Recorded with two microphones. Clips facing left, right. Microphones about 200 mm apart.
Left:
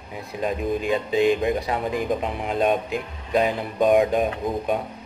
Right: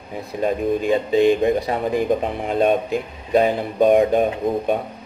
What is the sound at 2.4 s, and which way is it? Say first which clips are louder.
Speech: right 2 dB; 35° right (ahead or behind).